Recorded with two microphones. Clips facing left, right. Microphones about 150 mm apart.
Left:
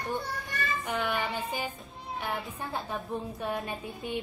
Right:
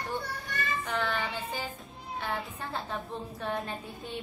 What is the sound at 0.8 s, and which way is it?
Speech, 15° left (ahead or behind).